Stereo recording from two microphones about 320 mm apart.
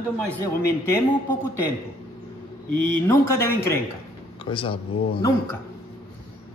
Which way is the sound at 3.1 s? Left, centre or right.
Centre.